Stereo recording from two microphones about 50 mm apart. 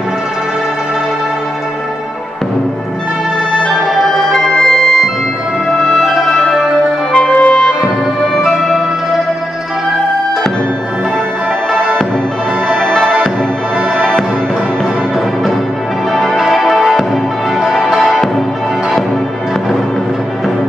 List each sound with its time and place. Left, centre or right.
4.0 s music: centre
7.1 s music: left
8.5 s music: centre
12.7 s music: centre
16.1 s music: centre